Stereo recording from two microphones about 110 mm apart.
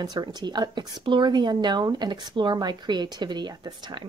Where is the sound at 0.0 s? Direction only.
40° right (ahead or behind).